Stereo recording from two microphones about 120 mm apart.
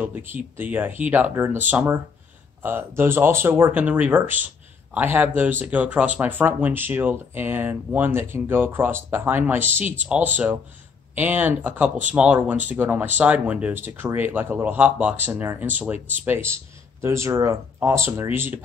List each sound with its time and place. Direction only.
0.0 s speech: 20° right (ahead or behind)